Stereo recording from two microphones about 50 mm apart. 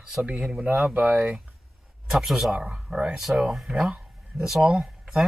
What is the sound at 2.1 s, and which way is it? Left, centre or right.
Speech, centre.